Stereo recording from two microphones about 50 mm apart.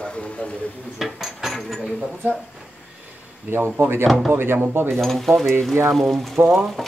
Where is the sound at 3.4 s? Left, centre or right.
Right.